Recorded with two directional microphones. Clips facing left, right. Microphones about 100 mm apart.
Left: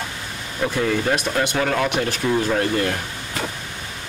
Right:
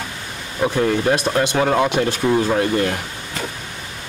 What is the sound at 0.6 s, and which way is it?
Speech, 15° right (ahead or behind).